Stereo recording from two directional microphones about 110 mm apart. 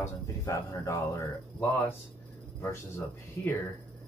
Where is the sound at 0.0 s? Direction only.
25° left (ahead or behind).